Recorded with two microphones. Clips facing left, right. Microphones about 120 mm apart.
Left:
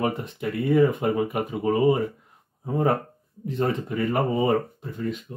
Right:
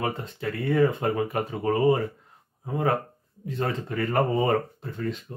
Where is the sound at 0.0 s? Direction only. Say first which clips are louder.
Left 3 dB; 20° left (ahead or behind).